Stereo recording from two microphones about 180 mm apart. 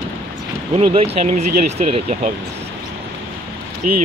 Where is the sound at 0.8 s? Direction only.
35° right (ahead or behind).